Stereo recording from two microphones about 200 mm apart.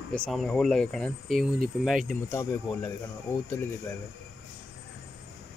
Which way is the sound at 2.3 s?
15° left (ahead or behind).